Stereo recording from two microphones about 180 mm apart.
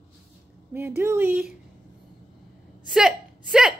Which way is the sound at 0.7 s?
15° right (ahead or behind).